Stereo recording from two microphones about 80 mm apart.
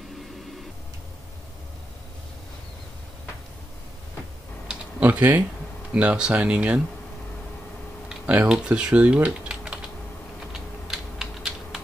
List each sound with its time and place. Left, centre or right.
5.0 s speech: right
8.1 s speech: centre
10.9 s typing: centre